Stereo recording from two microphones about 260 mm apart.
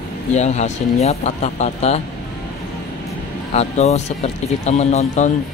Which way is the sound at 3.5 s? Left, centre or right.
Left.